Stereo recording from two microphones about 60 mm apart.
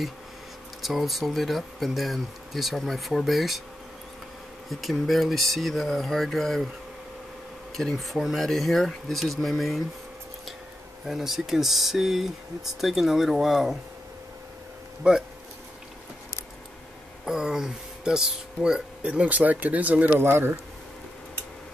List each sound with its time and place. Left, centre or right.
0.8 s speech: centre
4.6 s speech: centre
7.7 s speech: centre
11.1 s speech: centre
15.0 s speech: centre
17.2 s speech: centre; by 20.2 s right
20.2 s speech: right